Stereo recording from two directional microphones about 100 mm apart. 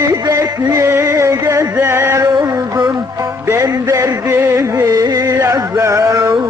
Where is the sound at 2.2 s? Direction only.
40° right (ahead or behind).